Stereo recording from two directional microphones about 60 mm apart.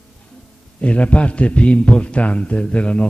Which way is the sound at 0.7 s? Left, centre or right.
Left.